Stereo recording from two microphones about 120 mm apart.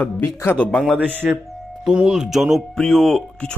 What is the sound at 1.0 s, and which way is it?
Speech, 15° right (ahead or behind).